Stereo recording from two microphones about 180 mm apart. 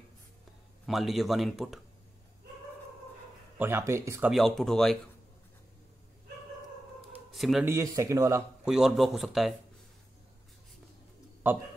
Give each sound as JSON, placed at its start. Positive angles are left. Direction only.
{"t": 0.8, "sound": "speech", "side_deg": 0}
{"t": 3.5, "sound": "speech", "side_deg": -10}
{"t": 4.3, "sound": "speech", "side_deg": 0}
{"t": 7.3, "sound": "speech", "side_deg": 0}
{"t": 7.6, "sound": "speech", "side_deg": -15}
{"t": 8.6, "sound": "speech", "side_deg": -5}
{"t": 11.4, "sound": "speech", "side_deg": -10}